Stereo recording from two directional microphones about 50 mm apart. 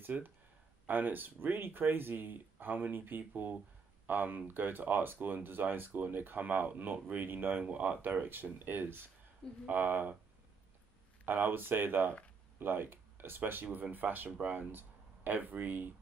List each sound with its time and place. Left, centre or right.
0.0 s speech: right
11.2 s speech: right